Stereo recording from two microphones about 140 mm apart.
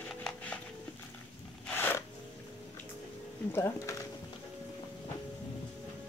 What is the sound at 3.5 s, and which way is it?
Speech, 20° left (ahead or behind).